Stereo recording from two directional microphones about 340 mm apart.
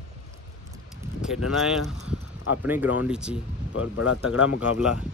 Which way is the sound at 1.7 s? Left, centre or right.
Centre.